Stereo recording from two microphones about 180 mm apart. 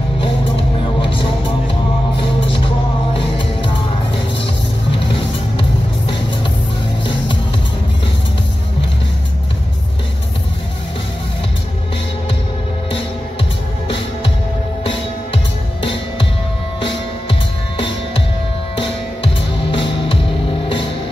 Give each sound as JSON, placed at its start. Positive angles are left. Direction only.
{"t": 14.9, "sound": "music", "side_deg": 30}